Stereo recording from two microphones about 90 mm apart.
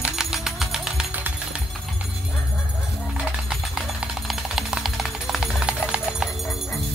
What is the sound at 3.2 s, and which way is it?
Music, 10° right (ahead or behind).